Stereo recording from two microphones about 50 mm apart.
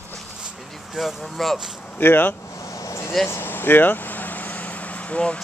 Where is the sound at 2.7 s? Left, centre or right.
Left.